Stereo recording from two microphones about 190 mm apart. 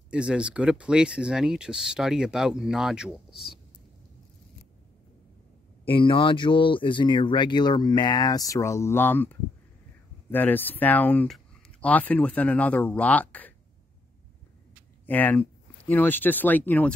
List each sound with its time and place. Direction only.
0.1 s speech: 5° right (ahead or behind)
5.9 s speech: 25° left (ahead or behind); by 13.5 s 10° left (ahead or behind)
15.0 s speech: 10° left (ahead or behind)